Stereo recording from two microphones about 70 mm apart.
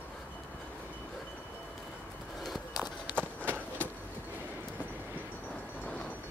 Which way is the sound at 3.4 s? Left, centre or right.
Right.